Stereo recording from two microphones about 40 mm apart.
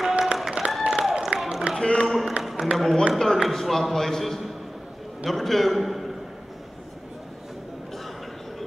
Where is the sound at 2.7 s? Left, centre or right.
Right.